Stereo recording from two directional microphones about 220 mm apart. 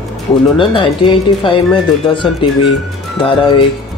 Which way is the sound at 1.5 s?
25° left (ahead or behind).